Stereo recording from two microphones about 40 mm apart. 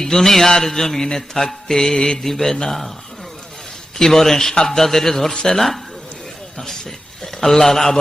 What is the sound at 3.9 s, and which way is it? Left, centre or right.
A man's voice, centre.